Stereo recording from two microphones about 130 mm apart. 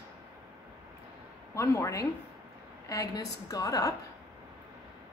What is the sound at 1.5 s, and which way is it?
Female singing, 20° left (ahead or behind).